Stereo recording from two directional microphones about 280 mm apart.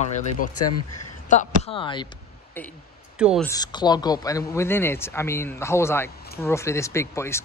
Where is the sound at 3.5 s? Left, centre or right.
Centre.